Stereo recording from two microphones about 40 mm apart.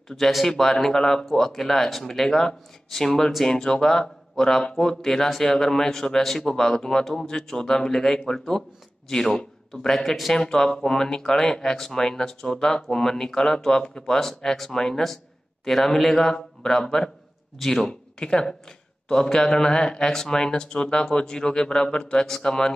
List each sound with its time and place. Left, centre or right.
0.1 s speech: centre
18.2 s speech: centre